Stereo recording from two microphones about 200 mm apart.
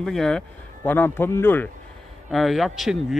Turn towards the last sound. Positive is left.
turn(degrees=0)  # may be behind; listen again after turning